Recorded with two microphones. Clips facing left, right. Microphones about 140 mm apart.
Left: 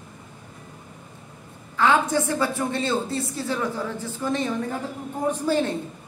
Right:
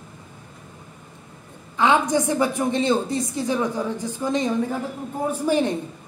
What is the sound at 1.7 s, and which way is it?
A woman's voice, 15° right (ahead or behind).